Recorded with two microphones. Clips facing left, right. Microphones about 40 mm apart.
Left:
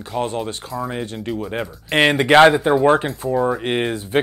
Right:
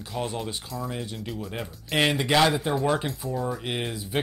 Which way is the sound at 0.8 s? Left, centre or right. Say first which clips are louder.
Left 8 dB; left.